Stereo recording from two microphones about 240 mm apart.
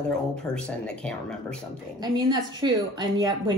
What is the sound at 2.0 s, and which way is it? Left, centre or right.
A woman's voice, centre.